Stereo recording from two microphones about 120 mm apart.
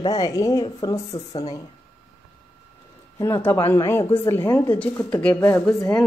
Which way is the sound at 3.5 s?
25° left (ahead or behind).